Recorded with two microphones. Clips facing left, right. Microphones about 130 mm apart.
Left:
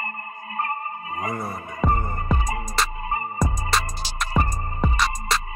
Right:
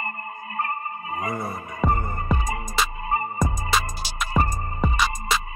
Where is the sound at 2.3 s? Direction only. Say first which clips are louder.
Even; 25° left (ahead or behind).